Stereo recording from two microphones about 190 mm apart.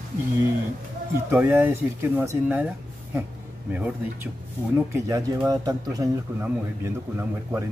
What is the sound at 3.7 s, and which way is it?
A man's voice, 10° right (ahead or behind).